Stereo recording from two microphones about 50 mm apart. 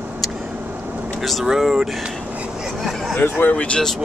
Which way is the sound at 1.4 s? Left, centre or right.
Centre.